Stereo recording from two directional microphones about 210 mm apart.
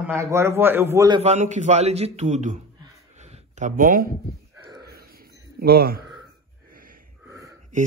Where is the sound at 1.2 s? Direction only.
35° right (ahead or behind).